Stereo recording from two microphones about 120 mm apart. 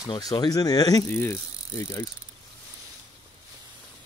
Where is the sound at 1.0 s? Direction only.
20° left (ahead or behind).